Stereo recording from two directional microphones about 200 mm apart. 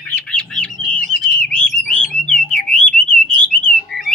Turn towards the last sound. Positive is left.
turn(degrees=0)  # may be behind; listen again after turning